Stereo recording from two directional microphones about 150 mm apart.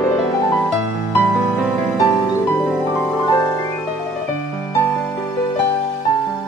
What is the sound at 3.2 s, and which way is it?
Music, 20° left (ahead or behind).